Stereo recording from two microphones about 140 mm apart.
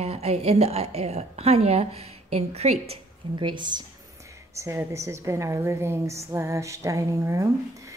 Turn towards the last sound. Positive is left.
turn(degrees=-20)  # may be behind; listen again after turning